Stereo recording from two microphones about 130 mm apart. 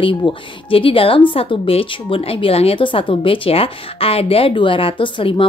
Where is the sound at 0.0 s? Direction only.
40° left (ahead or behind).